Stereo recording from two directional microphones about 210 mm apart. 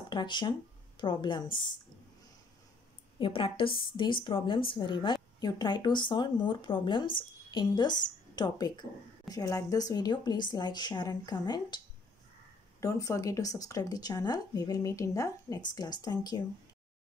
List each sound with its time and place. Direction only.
0.1 s speech: 20° left (ahead or behind)
3.2 s speech: 25° left (ahead or behind)
12.8 s speech: 15° left (ahead or behind)